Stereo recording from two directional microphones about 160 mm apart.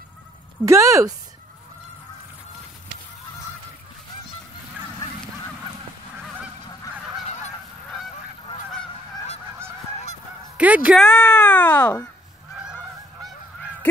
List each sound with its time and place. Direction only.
0.7 s speech: 20° right (ahead or behind)
10.6 s a woman's voice: 10° right (ahead or behind)
11.0 s speech: 5° left (ahead or behind)